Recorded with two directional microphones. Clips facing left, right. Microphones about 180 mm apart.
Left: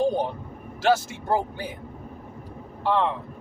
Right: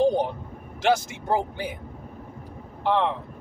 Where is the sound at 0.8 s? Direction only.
15° right (ahead or behind).